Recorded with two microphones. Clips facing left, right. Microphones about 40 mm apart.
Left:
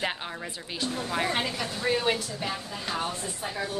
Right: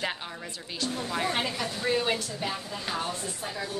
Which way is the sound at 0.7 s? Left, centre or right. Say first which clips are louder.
Left 1 dB; centre.